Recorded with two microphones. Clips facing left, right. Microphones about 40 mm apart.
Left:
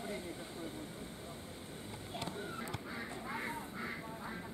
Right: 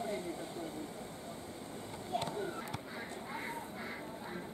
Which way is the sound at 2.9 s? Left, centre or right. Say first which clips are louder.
Left 1 dB; centre.